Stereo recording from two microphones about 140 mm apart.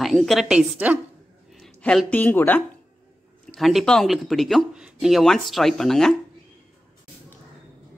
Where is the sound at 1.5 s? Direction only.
5° left (ahead or behind).